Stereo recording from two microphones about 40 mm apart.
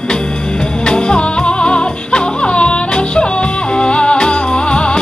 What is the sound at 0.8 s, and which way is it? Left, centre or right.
Music, left.